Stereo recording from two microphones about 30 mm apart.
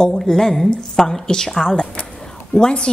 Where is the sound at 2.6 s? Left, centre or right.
Left.